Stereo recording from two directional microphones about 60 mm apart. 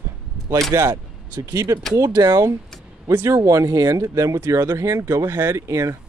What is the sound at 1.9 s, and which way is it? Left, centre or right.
Speech, right.